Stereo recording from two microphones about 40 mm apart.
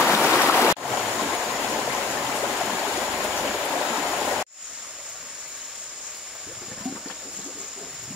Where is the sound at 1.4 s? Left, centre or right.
Centre.